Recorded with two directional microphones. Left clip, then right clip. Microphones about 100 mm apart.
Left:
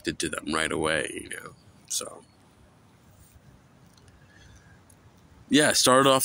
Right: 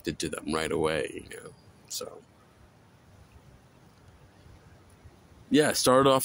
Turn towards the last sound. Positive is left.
turn(degrees=-5)  # may be behind; listen again after turning